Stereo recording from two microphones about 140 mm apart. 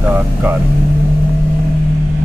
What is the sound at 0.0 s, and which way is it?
Speech, 10° right (ahead or behind).